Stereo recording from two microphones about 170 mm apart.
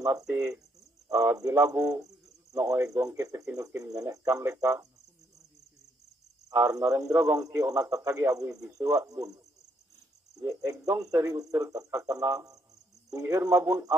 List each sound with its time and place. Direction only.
0.0 s speech: 15° right (ahead or behind)
6.5 s speech: 20° right (ahead or behind)